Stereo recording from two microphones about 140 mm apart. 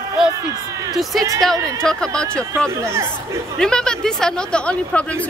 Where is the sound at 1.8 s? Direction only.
5° left (ahead or behind).